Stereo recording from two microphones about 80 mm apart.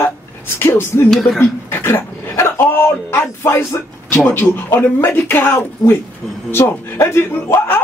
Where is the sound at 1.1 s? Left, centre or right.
Centre.